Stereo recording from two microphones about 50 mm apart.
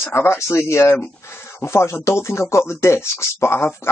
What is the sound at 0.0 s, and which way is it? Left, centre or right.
Speech, left.